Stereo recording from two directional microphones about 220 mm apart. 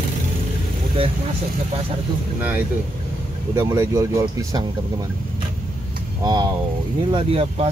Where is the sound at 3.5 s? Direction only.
15° right (ahead or behind).